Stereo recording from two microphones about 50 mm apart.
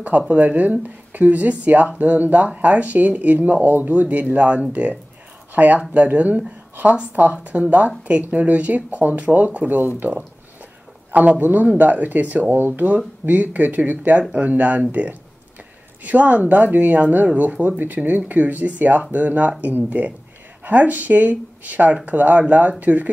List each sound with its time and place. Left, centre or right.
0.3 s speech: right